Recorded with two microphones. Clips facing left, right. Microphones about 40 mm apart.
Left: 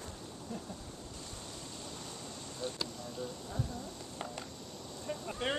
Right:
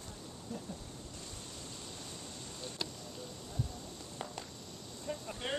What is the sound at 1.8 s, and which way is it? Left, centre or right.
Vehicle, centre.